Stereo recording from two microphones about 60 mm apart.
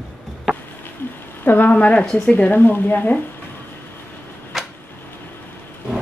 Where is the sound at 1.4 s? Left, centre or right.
Left.